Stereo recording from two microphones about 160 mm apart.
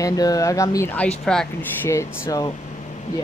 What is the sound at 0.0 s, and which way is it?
Speech, 20° left (ahead or behind).